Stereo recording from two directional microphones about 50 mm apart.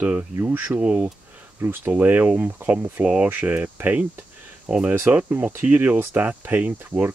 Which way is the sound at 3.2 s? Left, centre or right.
Right.